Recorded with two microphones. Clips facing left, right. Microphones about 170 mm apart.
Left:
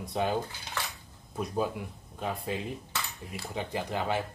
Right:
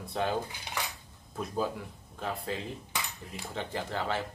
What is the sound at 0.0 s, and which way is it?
Speech, 15° left (ahead or behind).